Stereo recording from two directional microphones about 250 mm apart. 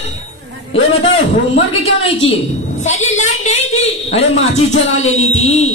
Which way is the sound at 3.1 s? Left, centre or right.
Left.